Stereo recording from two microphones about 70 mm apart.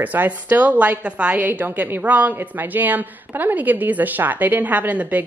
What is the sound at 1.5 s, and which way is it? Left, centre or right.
Speech, right.